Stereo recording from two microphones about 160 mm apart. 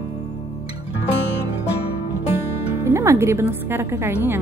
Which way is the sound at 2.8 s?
15° right (ahead or behind).